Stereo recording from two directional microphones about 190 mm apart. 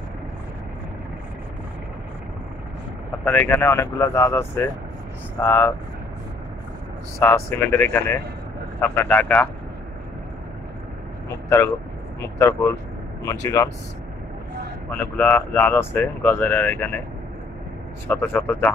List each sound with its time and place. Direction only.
3.3 s speech: 10° left (ahead or behind)
7.2 s speech: 10° left (ahead or behind)
11.4 s speech: 15° left (ahead or behind)
14.9 s speech: 10° left (ahead or behind)
18.0 s speech: 10° left (ahead or behind)